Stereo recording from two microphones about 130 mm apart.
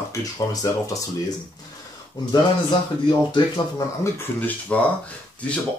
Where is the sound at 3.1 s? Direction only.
30° left (ahead or behind).